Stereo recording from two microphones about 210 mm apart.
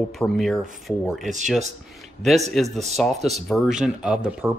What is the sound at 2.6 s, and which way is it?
Speech, centre (ahead or behind).